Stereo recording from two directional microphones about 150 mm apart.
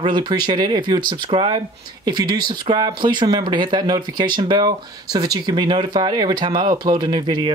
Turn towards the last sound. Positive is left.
turn(degrees=-30)  # may be behind; listen again after turning